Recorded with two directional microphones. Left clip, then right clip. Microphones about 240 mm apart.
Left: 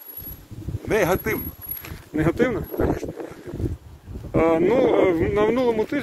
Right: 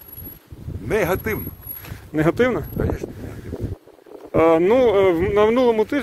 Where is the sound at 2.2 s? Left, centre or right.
Right.